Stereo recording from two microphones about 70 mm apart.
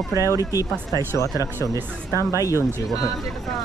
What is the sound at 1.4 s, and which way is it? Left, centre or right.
Speech, right.